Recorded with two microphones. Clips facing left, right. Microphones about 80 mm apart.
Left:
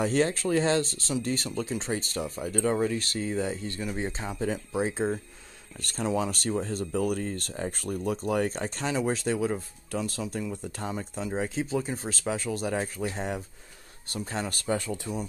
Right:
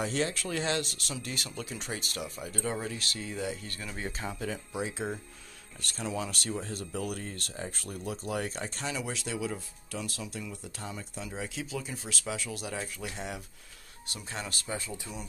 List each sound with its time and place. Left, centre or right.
0.0 s speech: left
14.7 s speech: left